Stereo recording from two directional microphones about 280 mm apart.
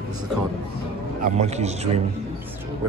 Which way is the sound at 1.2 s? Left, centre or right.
Right.